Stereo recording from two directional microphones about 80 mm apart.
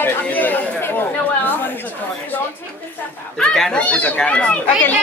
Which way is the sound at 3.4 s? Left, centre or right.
Centre.